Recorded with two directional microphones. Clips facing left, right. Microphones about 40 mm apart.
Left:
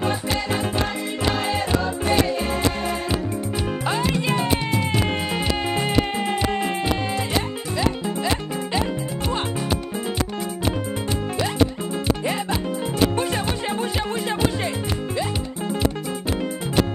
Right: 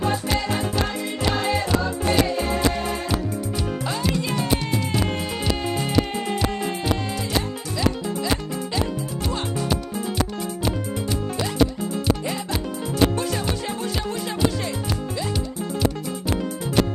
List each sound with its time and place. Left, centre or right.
3.8 s music: left
12.2 s music: left